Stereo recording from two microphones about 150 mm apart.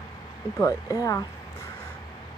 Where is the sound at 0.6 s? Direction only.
25° left (ahead or behind).